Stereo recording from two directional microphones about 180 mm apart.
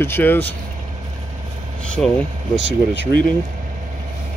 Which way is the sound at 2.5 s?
80° left.